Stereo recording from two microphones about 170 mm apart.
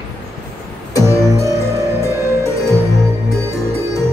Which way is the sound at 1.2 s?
15° right (ahead or behind).